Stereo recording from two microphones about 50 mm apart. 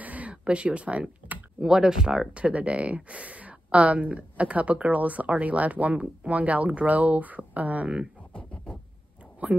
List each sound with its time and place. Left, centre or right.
0.0 s computer keyboard: right
1.6 s speech: centre
8.3 s beatboxing: left
9.4 s a sound: right